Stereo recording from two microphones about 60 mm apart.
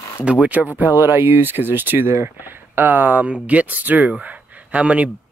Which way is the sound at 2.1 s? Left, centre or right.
Right.